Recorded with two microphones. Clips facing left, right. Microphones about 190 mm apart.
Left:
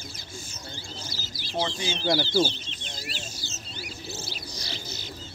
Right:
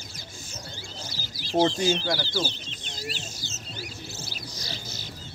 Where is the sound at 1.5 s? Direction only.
45° right (ahead or behind).